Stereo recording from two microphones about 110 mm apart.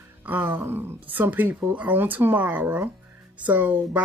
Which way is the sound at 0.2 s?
15° right (ahead or behind).